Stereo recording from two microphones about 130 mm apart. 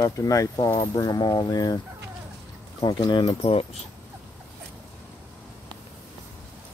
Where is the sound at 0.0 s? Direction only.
25° left (ahead or behind).